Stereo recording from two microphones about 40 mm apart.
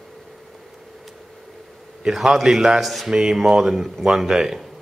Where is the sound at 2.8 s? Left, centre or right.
Centre.